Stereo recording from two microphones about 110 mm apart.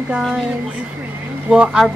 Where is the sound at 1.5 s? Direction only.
5° right (ahead or behind).